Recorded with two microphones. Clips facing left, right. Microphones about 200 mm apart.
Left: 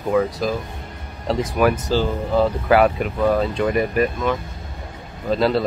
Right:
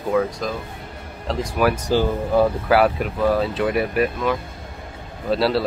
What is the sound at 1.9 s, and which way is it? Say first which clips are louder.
Speech: right 1 dB; 15° right (ahead or behind).